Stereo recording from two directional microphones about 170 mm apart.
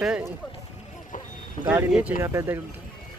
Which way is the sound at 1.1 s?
50° left (ahead or behind).